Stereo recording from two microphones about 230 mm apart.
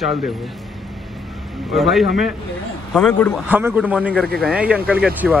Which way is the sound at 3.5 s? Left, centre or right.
Centre.